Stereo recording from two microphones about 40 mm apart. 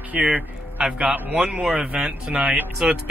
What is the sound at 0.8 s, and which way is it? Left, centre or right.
Speech, centre.